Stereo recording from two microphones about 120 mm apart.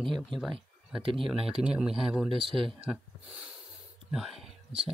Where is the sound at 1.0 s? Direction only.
45° right (ahead or behind).